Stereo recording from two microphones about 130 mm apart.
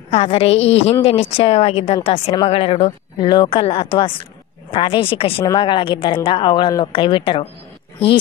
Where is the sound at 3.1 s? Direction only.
35° left (ahead or behind).